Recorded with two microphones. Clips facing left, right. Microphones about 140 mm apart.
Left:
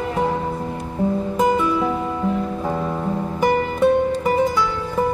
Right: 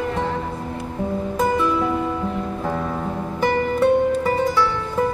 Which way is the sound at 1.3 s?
20° left (ahead or behind).